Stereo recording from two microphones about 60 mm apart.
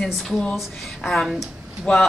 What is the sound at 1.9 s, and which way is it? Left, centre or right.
Speech, left.